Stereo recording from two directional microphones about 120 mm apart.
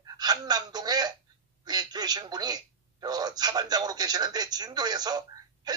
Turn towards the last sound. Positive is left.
turn(degrees=-35)  # may be behind; listen again after turning